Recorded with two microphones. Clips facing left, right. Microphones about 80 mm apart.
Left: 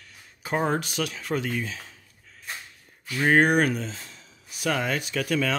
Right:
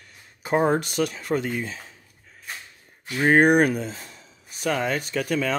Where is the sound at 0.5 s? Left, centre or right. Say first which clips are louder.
Right 5 dB; centre.